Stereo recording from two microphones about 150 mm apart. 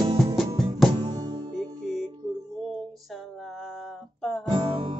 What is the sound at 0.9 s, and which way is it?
Music, 30° right (ahead or behind).